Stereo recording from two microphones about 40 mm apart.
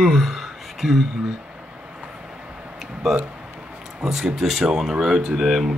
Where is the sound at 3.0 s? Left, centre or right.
Centre.